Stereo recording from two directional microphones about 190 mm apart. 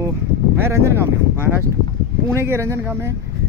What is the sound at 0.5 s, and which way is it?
Speech, 15° right (ahead or behind).